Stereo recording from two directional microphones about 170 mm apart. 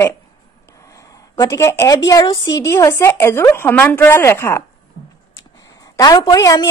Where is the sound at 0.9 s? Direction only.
20° left (ahead or behind).